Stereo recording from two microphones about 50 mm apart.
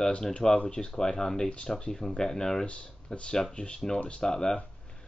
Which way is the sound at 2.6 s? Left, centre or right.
Left.